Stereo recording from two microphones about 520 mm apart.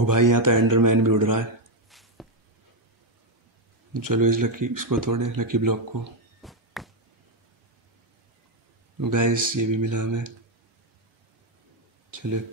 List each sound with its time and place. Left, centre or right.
0.0 s speech: right
1.9 s a sound: centre
3.9 s speech: right
6.4 s a sound: centre
9.0 s speech: right
12.2 s speech: right